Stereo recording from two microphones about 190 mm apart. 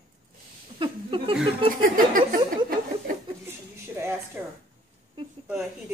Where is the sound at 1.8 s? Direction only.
45° right (ahead or behind).